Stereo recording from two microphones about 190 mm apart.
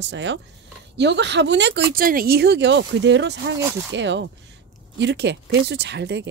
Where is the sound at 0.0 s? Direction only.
70° right (ahead or behind).